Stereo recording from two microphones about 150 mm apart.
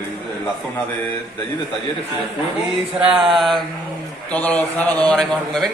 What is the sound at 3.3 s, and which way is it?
A man's voice, centre (ahead or behind).